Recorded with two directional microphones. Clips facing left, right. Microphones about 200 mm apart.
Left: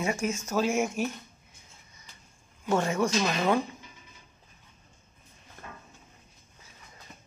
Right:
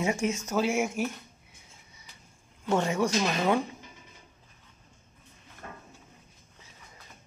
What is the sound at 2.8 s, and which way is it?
Speech, 15° right (ahead or behind).